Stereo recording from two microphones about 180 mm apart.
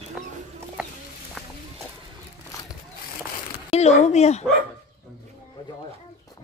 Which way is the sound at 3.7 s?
35° left (ahead or behind).